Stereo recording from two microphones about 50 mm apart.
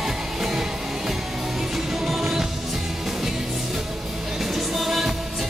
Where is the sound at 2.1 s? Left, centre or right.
Centre.